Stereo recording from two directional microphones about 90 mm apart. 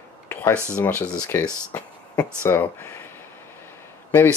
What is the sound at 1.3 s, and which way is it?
Speech, 25° left (ahead or behind).